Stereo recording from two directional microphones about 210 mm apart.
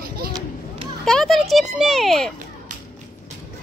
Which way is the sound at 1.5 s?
Centre (ahead or behind).